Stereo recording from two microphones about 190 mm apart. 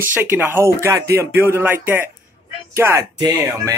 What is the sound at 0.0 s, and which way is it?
A man's voice, 10° right (ahead or behind).